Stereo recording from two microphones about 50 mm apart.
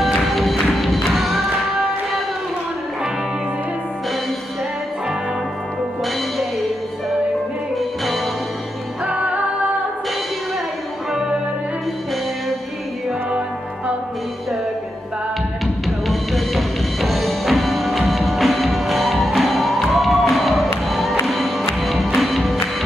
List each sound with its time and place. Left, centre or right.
0.0 s music: centre
7.7 s music: centre
9.0 s music: right
11.1 s music: centre
15.6 s music: centre